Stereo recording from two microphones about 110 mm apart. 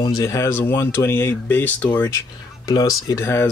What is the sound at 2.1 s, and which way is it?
Speech, 35° left (ahead or behind).